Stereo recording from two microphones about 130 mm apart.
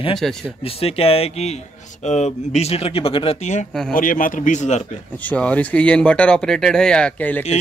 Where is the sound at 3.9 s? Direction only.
90° left; by 4.8 s 70° left (ahead or behind).